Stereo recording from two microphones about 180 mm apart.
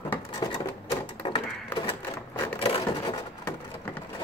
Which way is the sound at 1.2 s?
30° left (ahead or behind).